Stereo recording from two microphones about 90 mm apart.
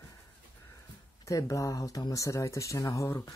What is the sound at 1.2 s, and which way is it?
Speech, 35° left (ahead or behind).